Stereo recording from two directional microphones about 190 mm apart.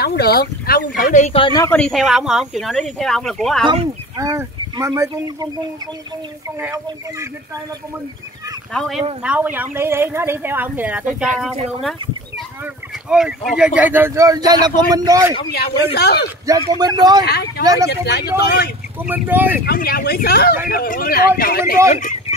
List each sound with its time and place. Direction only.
0.0 s speech: 55° left (ahead or behind); by 1.8 s 20° left (ahead or behind)
1.8 s speech: centre (ahead or behind)
3.6 s speech: 35° right (ahead or behind)
4.2 s speech: 15° right (ahead or behind)
6.6 s speech: 15° right (ahead or behind)
8.7 s speech: centre (ahead or behind)
13.7 s speech: 10° right (ahead or behind)
15.5 s speech: 55° left (ahead or behind)
16.4 s speech: 20° right (ahead or behind)
17.2 s speech: 60° left (ahead or behind)
18.9 s speech: 10° right (ahead or behind)
19.6 s speech: 50° left (ahead or behind)